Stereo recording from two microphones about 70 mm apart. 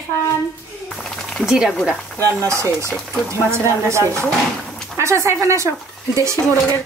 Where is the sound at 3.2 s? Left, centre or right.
Right.